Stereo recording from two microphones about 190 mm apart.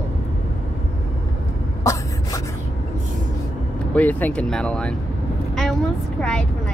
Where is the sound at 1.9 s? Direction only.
15° left (ahead or behind).